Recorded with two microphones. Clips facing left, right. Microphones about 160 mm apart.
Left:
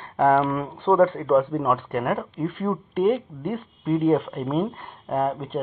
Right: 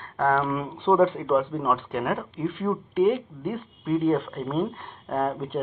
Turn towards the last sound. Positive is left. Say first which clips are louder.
# left 2 dB
turn(degrees=0)  # may be behind; listen again after turning